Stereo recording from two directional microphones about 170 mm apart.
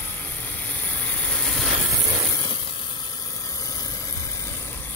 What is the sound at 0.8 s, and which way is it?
Vehicle, 10° left (ahead or behind).